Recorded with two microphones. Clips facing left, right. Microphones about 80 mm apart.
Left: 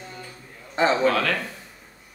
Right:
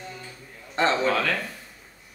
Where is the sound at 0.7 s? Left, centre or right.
Centre.